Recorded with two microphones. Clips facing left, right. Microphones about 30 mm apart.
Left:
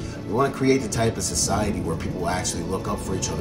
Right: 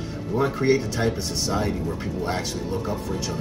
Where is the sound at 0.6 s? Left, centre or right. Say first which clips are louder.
Even; right.